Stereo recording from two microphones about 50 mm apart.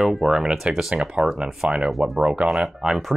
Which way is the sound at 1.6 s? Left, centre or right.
Centre.